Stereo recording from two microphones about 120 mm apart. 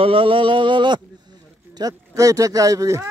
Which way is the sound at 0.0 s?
50° right (ahead or behind).